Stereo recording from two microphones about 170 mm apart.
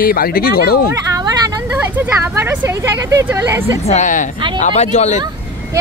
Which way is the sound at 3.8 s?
45° left (ahead or behind).